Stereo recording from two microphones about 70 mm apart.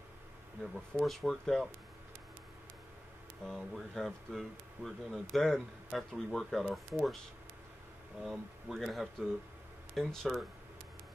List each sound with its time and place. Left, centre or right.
0.9 s speech: centre
3.4 s speech: centre
8.2 s speech: centre